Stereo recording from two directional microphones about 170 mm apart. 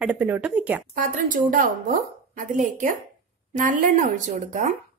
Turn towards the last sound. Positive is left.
turn(degrees=-50)  # may be behind; listen again after turning